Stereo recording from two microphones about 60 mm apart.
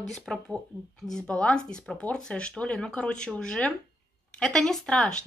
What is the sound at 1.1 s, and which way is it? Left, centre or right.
Speech, centre.